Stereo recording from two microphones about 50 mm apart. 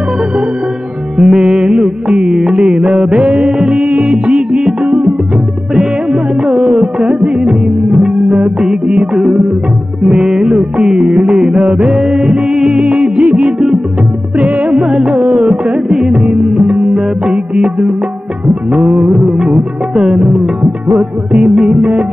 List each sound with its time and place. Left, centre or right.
1.1 s music: centre
3.7 s music: right
6.8 s music: centre
12.7 s music: right
14.7 s music: centre
15.2 s music: right
15.9 s music: centre
18.8 s music of bollywood: centre
21.5 s music: centre